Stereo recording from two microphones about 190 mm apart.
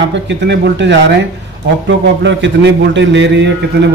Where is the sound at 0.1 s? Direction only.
70° right (ahead or behind).